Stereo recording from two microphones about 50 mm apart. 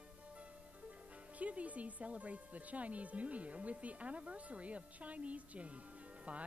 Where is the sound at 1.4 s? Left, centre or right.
Right.